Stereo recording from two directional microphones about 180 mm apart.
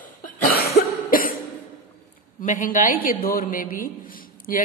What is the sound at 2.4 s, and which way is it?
A woman's voice, 45° left (ahead or behind).